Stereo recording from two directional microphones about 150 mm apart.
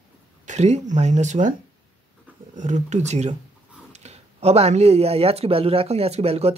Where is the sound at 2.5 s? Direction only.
50° right (ahead or behind).